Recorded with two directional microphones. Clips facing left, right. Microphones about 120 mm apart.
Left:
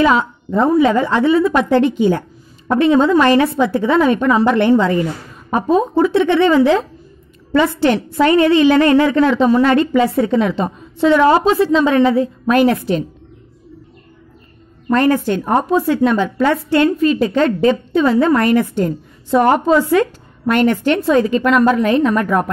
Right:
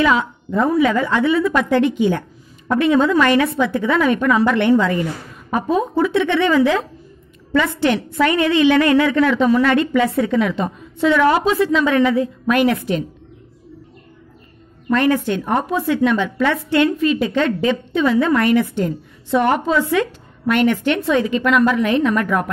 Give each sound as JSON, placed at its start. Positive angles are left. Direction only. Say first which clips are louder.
{"t": 0.0, "sound": "a woman's voice", "louder": "left 3 dB", "side_deg": 35}
{"t": 14.9, "sound": "a woman's voice", "louder": "left 3 dB", "side_deg": 40}